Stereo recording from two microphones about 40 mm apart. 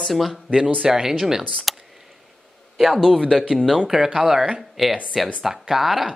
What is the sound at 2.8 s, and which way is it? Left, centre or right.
Speech, centre.